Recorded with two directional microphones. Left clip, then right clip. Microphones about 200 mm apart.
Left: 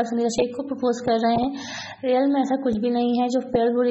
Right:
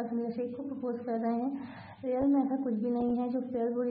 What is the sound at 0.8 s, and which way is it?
A woman's voice, 35° left (ahead or behind).